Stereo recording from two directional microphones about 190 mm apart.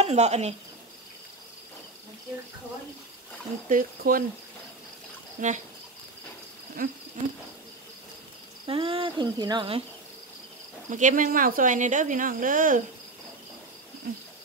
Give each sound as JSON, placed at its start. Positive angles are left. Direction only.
{"t": 0.0, "sound": "speech", "side_deg": -35}
{"t": 3.6, "sound": "speech", "side_deg": -45}
{"t": 5.4, "sound": "speech", "side_deg": -45}
{"t": 6.8, "sound": "speech", "side_deg": -50}
{"t": 8.6, "sound": "speech", "side_deg": -30}
{"t": 10.9, "sound": "speech", "side_deg": -40}